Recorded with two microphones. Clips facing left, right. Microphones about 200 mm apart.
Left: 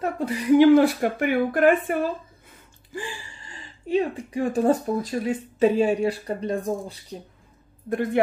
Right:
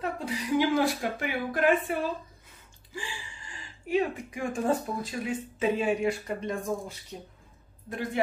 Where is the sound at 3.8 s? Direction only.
30° left (ahead or behind).